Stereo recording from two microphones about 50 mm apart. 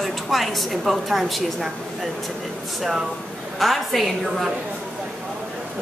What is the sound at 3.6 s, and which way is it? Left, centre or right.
Speech, centre.